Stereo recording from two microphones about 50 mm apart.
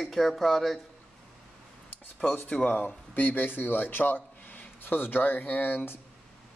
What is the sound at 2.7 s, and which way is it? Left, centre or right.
Speech, left.